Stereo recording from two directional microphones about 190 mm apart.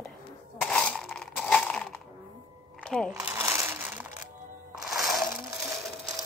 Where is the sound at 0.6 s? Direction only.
5° left (ahead or behind).